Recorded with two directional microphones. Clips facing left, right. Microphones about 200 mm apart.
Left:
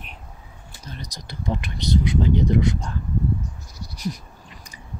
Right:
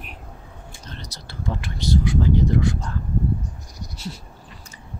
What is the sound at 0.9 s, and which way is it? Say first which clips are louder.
Speech: left 4 dB; 10° left (ahead or behind).